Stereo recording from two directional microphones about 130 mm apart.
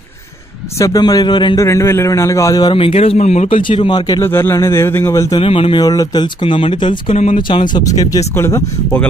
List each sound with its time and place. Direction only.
0.7 s speech: 25° left (ahead or behind)
1.7 s speech: 20° left (ahead or behind)
2.7 s a man's voice: 45° left (ahead or behind)
3.2 s speech: 65° left (ahead or behind)
3.4 s speech: 40° left (ahead or behind)
4.2 s speech: 20° left (ahead or behind)
5.4 s a man's voice: 45° left (ahead or behind)
5.9 s speech: 30° left (ahead or behind)
7.2 s speech: 65° left (ahead or behind)
7.4 s speech: 35° left (ahead or behind); by 9.0 s 20° left (ahead or behind)